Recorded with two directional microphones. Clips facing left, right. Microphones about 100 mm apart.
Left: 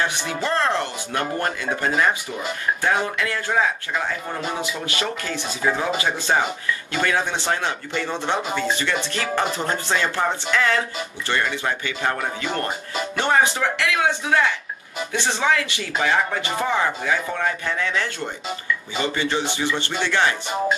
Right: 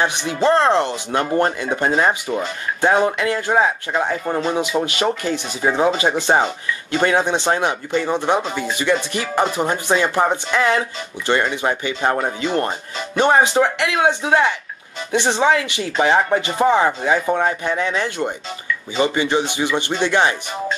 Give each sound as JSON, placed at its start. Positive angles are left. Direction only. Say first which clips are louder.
{"t": 0.0, "sound": "speech", "louder": "right 6 dB", "side_deg": -20}
{"t": 4.8, "sound": "speech", "louder": "right 6 dB", "side_deg": -20}